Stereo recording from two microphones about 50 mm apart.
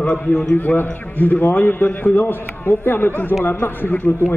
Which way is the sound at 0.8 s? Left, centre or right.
Left.